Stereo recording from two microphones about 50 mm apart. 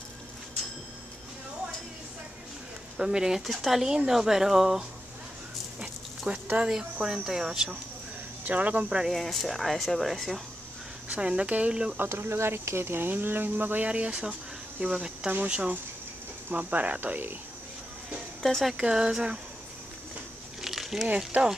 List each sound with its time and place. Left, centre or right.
3.0 s speech: centre
5.8 s dog: right
6.7 s speech: centre
8.5 s speech: right
9.1 s speech: centre
11.1 s speech: right
12.0 s speech: right
13.8 s speech: right
18.4 s speech: centre
18.8 s speech: centre
20.6 s a sound: centre
21.3 s speech: right